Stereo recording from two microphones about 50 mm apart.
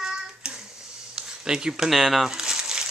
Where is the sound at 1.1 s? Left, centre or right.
Centre.